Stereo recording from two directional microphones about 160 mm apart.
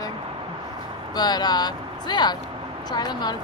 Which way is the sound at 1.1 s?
25° left (ahead or behind).